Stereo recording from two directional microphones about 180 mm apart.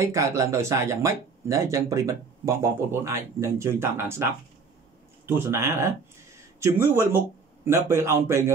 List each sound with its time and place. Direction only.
0.0 s speech: 15° right (ahead or behind)